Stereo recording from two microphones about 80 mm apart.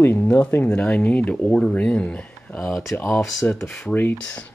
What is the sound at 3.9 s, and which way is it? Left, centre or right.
Speech, left.